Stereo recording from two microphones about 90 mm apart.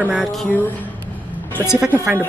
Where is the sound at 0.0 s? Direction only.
5° right (ahead or behind).